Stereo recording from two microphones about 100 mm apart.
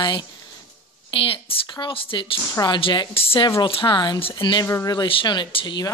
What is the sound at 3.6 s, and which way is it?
Speech, 60° left (ahead or behind).